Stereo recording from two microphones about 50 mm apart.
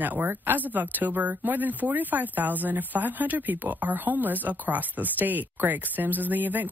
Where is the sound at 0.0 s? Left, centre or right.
Right.